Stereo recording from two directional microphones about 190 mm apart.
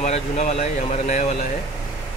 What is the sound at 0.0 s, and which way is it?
Speech, 35° left (ahead or behind).